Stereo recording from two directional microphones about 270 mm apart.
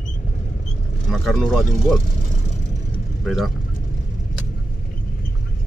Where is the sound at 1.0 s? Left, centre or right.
Centre.